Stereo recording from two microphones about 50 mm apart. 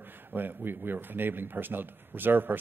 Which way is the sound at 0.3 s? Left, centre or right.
Right.